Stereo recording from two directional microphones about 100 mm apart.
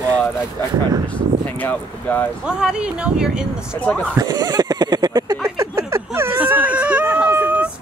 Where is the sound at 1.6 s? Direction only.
15° left (ahead or behind).